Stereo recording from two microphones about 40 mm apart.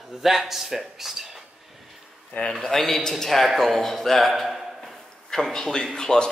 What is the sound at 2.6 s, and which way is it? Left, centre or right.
A man's voice, centre.